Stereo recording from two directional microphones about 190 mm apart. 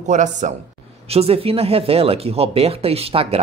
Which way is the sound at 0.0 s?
40° right (ahead or behind).